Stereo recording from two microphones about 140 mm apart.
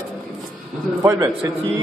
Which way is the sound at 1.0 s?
25° right (ahead or behind).